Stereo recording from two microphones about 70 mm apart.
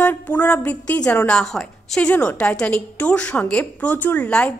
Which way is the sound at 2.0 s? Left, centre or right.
Centre.